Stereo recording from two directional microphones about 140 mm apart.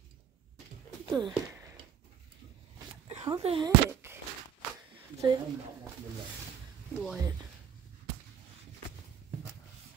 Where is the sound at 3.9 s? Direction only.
15° right (ahead or behind).